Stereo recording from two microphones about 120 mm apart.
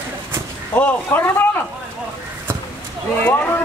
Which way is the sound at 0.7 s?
15° left (ahead or behind).